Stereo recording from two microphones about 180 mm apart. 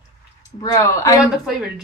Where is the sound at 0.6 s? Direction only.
15° left (ahead or behind).